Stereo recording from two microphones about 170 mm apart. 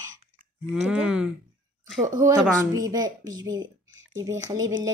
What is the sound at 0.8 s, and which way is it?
Speech, 5° right (ahead or behind).